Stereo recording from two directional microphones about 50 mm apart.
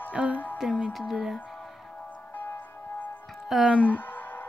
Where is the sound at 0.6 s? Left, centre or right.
Centre.